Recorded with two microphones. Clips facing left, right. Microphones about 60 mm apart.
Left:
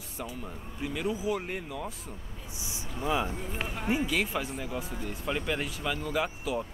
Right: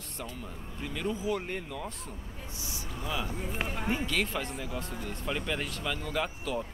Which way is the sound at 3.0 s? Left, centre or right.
Left.